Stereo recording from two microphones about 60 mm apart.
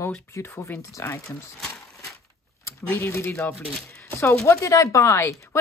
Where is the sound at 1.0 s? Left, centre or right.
Left.